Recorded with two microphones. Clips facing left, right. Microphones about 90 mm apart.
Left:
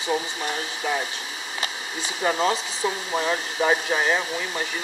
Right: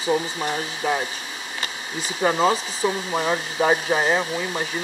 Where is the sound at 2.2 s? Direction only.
15° right (ahead or behind).